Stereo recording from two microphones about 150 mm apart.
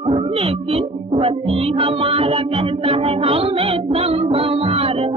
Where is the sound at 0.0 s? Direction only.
40° right (ahead or behind).